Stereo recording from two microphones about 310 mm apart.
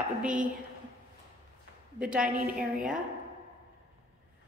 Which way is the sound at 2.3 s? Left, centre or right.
Right.